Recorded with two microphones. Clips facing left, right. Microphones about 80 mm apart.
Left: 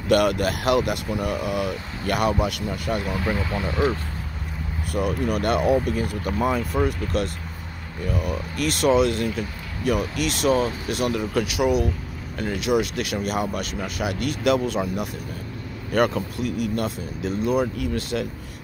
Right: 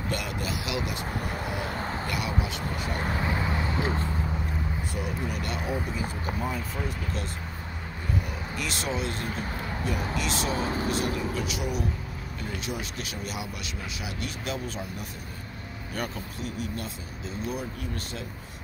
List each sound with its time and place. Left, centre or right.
0.1 s speech: left
3.2 s speech: right
4.9 s speech: left
6.2 s speech: left
8.5 s speech: left